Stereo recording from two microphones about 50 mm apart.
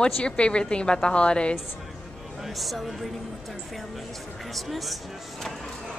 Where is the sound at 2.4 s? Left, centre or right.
Centre.